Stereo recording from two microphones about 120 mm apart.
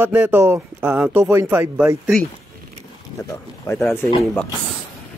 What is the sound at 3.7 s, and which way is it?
Speech, 25° left (ahead or behind).